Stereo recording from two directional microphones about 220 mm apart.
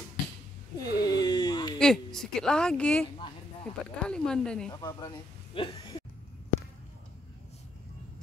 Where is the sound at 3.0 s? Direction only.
25° left (ahead or behind).